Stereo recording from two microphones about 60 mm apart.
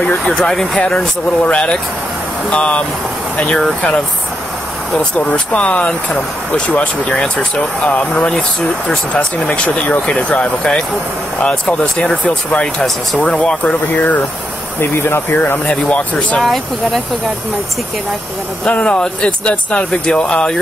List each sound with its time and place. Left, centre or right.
0.3 s speech: centre
14.8 s speech: left
15.6 s speech: left
16.3 s speech: centre
18.7 s speech: centre